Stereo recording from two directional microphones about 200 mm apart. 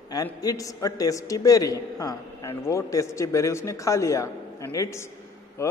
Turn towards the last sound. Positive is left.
turn(degrees=15)  # may be behind; listen again after turning